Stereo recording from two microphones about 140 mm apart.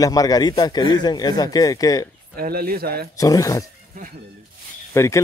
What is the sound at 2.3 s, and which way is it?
Speech, 90° right.